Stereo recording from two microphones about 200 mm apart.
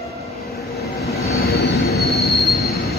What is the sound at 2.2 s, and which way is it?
Train wheels squealing, centre (ahead or behind).